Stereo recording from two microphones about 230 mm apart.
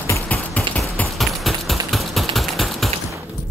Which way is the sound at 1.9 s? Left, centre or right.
Centre.